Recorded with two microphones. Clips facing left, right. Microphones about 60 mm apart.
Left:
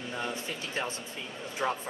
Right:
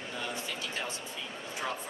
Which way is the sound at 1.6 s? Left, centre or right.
Centre.